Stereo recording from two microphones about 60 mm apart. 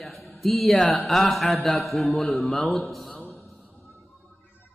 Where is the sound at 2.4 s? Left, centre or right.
Centre.